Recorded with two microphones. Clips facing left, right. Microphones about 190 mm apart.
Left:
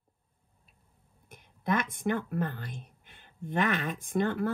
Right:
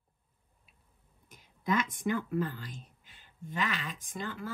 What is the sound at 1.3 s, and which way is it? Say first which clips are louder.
Speech: left 1 dB; 55° left (ahead or behind).